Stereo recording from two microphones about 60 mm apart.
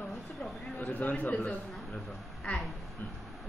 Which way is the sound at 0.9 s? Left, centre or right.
Left.